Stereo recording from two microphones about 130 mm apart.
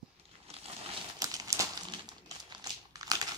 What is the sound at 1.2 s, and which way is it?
Crumpling, 30° right (ahead or behind).